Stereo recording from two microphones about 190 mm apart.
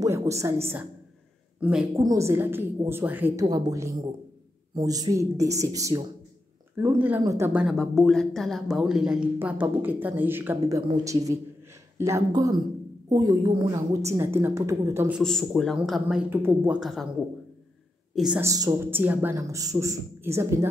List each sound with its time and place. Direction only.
0.0 s a woman's voice: 15° right (ahead or behind)
2.0 s a man's voice: 15° right (ahead or behind)
7.6 s a woman's voice: centre (ahead or behind)
15.2 s a woman's voice: centre (ahead or behind)
18.1 s speech: 5° right (ahead or behind)
18.4 s a man's voice: 20° right (ahead or behind)